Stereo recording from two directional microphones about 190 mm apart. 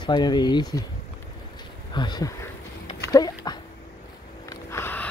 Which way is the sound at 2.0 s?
20° left (ahead or behind).